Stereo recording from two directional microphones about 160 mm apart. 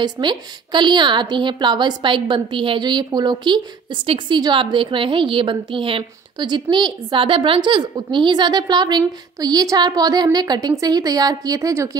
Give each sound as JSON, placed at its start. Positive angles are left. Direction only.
{"t": 0.0, "sound": "a woman's voice", "side_deg": -30}